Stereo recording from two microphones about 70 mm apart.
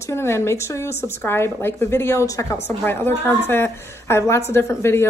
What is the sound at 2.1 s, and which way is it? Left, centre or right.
Speech, left.